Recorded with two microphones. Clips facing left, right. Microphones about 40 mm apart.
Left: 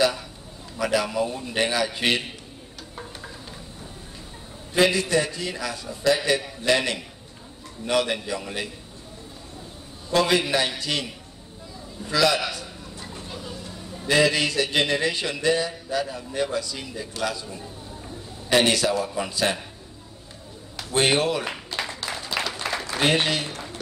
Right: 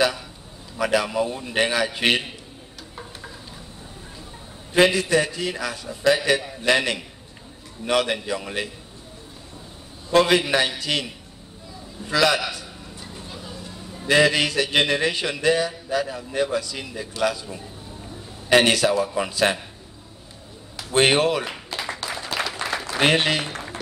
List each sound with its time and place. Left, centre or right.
0.7 s speech: right
4.7 s speech: right
10.1 s speech: right
12.1 s speech: right
13.1 s a sound: centre
14.0 s a man's voice: right
20.9 s speech: right
21.7 s a sound: right
22.3 s applause: right
22.8 s a sound: right